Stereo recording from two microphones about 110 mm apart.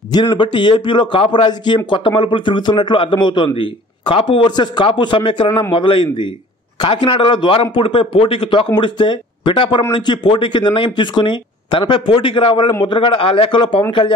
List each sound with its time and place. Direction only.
0.1 s speech: 40° left (ahead or behind)
4.5 s speech: 45° left (ahead or behind)